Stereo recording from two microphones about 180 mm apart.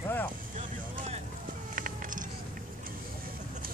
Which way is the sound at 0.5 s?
45° right (ahead or behind).